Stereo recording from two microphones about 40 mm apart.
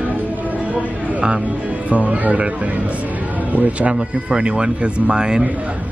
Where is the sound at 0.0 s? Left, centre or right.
Right.